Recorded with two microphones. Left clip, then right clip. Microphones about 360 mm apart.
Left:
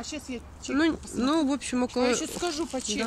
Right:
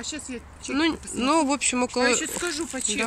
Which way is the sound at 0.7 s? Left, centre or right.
Centre.